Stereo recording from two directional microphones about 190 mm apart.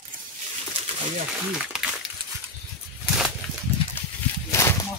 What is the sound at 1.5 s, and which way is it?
Speech, 5° right (ahead or behind).